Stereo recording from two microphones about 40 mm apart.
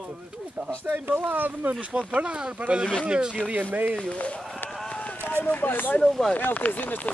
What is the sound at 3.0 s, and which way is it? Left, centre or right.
Speech, right.